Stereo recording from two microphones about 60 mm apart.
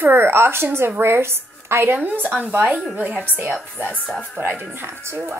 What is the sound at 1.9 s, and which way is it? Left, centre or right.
Speech, right.